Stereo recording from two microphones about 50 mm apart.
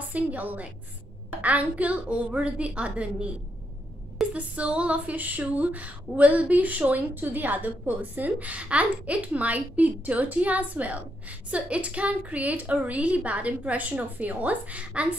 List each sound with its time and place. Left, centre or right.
0.1 s a woman's voice: right
4.3 s a woman's voice: right